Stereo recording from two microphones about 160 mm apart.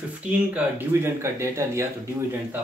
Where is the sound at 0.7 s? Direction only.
15° right (ahead or behind).